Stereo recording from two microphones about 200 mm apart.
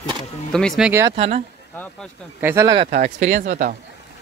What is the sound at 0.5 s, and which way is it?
Speech, centre (ahead or behind).